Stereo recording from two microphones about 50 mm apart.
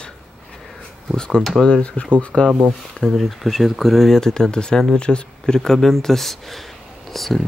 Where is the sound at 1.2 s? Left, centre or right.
Centre.